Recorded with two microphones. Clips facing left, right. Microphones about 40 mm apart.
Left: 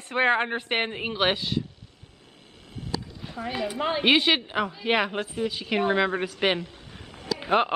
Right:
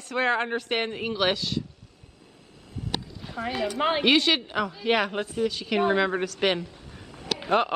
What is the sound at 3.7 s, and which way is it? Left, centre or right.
Speech, right.